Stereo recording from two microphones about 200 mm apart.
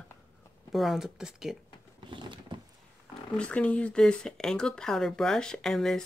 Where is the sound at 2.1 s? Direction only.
25° right (ahead or behind).